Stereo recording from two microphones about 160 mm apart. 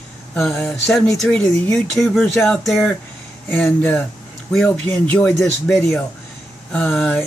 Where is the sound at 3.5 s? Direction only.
10° left (ahead or behind).